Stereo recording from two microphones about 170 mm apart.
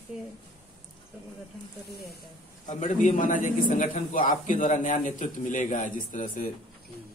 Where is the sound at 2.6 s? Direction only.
45° left (ahead or behind).